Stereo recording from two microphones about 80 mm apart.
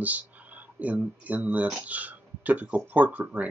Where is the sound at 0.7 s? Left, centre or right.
Centre.